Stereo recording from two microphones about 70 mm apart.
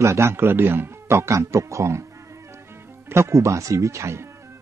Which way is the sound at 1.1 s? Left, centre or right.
Right.